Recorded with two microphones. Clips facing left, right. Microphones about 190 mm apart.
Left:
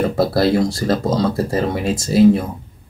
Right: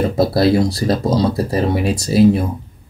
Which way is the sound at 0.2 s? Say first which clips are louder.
Right 2 dB; centre (ahead or behind).